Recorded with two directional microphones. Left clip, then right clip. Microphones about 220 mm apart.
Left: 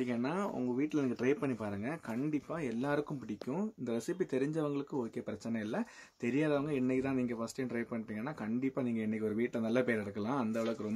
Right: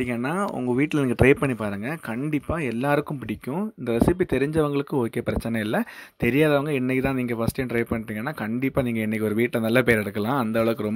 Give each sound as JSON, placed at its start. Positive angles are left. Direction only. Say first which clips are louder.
{"t": 0.4, "sound": "speech", "louder": "right 11 dB", "side_deg": -30}
{"t": 8.6, "sound": "speech", "louder": "right 12 dB", "side_deg": -30}